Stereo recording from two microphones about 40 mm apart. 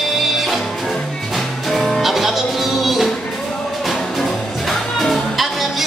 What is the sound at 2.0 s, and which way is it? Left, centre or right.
Music, centre.